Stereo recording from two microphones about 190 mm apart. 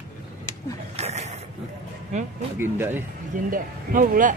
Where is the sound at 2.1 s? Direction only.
35° right (ahead or behind).